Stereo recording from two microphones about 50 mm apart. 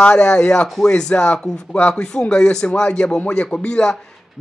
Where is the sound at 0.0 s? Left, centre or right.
Centre.